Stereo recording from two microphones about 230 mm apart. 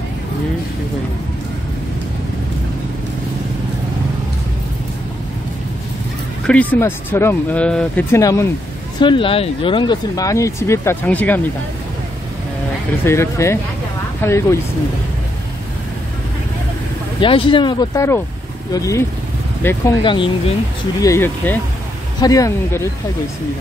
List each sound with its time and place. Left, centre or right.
6.4 s speech: centre
13.0 s speech: centre
17.2 s speech: left